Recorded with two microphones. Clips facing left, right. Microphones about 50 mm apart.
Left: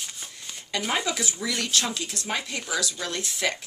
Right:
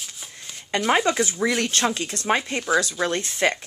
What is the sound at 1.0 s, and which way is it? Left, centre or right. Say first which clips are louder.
Speech: right 7 dB; right.